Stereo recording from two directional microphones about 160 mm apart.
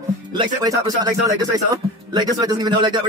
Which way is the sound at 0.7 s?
20° right (ahead or behind).